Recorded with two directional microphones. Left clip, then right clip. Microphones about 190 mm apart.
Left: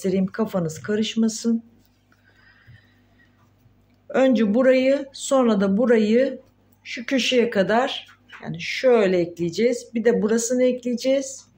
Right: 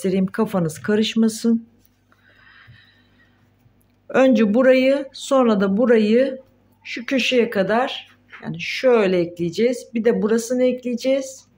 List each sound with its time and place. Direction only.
0.0 s speech: 15° right (ahead or behind)
2.4 s neigh: 15° right (ahead or behind)
4.1 s speech: 20° right (ahead or behind)